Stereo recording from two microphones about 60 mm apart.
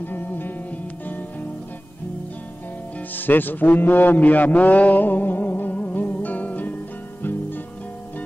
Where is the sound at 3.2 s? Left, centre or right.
Left.